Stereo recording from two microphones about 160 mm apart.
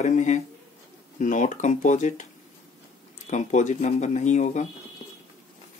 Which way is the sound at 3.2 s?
50° left (ahead or behind).